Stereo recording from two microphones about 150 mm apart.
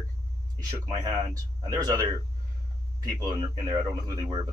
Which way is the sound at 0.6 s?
25° right (ahead or behind).